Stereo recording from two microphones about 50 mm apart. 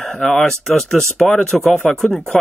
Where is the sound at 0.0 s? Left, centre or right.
Centre.